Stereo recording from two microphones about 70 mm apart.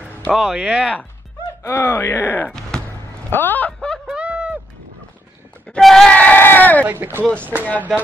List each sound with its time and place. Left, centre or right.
0.3 s speech: centre
1.6 s speech: left
2.7 s basketball bounce: centre
3.3 s speech: left
4.0 s a sound: centre
5.8 s speech: centre
6.0 s a sound: left
6.9 s speech: right